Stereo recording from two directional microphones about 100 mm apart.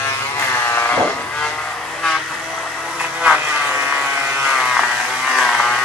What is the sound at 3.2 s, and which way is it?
Vehicle, 10° right (ahead or behind).